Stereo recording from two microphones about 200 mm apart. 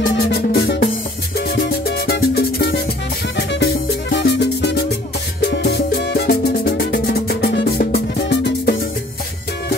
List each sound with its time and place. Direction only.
0.2 s music: 50° left (ahead or behind)